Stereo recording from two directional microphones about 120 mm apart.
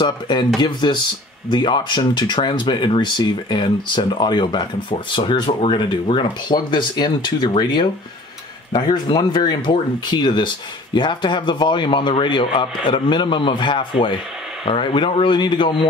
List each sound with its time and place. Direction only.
0.0 s speech: 40° left (ahead or behind)